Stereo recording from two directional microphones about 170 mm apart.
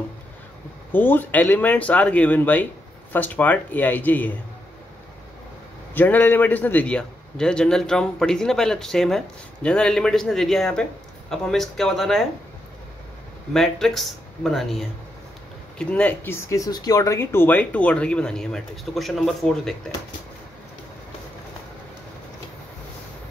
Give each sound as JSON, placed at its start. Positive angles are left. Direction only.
{"t": 0.9, "sound": "speech", "side_deg": 10}
{"t": 5.9, "sound": "a man's voice", "side_deg": 10}
{"t": 13.5, "sound": "a man's voice", "side_deg": 0}